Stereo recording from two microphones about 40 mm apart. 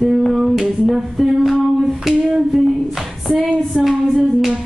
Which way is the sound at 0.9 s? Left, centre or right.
Centre.